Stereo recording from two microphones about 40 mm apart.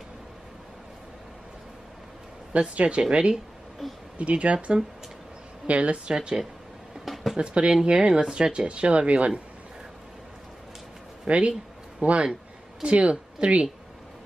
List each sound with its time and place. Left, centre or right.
2.7 s speech: right
3.8 s speech: centre
4.2 s speech: right
6.0 s speech: right
7.3 s speech: right
11.2 s speech: right